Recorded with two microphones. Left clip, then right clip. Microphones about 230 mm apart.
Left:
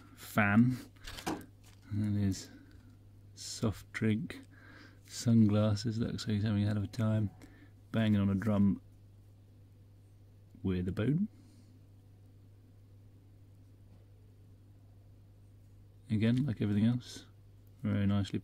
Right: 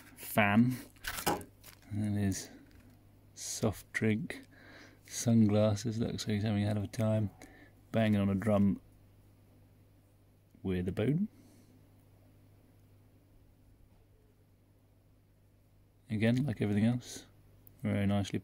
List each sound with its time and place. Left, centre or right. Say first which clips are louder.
0.3 s speech: right 1 dB; centre
1.0 s a sound: right 6 dB; right
1.4 s a sound: right 3 dB; centre
3.3 s speech: right 3 dB; centre
10.6 s speech: right 2 dB; centre
16.1 s speech: right 1 dB; centre